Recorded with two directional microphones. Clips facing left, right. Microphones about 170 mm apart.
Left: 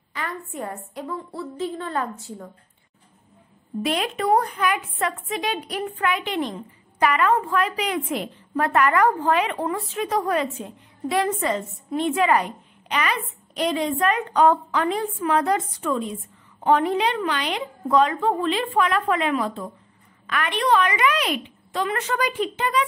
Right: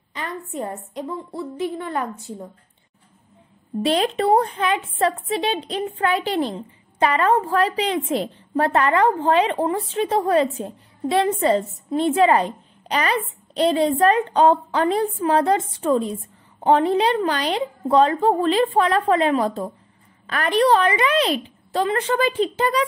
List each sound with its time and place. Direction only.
0.1 s a woman's voice: 25° right (ahead or behind)
3.8 s a woman's voice: 30° right (ahead or behind)